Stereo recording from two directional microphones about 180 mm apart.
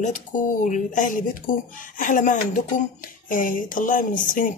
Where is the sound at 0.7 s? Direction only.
45° left (ahead or behind).